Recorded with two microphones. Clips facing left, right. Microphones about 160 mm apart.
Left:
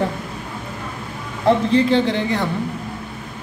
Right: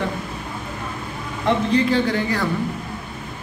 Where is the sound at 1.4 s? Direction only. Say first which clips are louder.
Left 3 dB; 30° left (ahead or behind).